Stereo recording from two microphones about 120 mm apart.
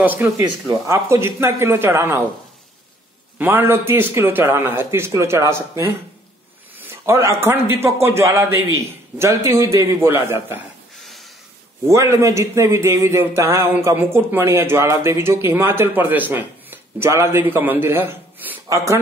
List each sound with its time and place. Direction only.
0.0 s speech: 15° right (ahead or behind)
0.4 s speech: 30° right (ahead or behind)
3.3 s speech: 15° right (ahead or behind)
11.9 s speech: 25° right (ahead or behind)